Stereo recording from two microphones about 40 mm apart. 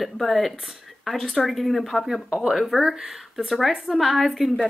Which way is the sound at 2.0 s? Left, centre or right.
Centre.